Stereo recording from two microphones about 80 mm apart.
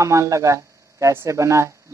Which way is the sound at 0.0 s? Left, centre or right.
Right.